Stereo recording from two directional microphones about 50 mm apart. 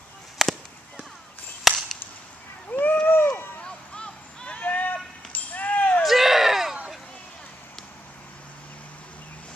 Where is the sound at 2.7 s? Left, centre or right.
Left.